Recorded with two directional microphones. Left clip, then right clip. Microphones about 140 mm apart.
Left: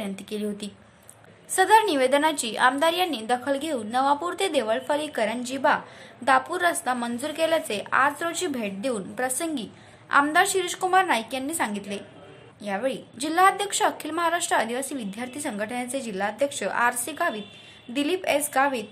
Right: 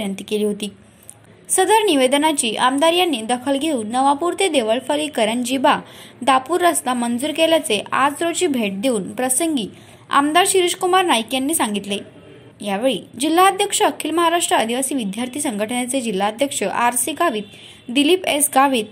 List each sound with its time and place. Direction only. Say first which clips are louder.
0.0 s a woman's voice: right 10 dB; 10° right (ahead or behind)